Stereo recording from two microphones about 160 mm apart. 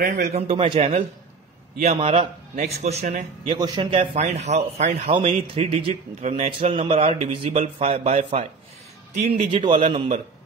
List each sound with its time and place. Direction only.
0.0 s a man's voice: 60° right (ahead or behind)
0.3 s speech: 40° right (ahead or behind)
3.4 s a man's voice: 25° right (ahead or behind)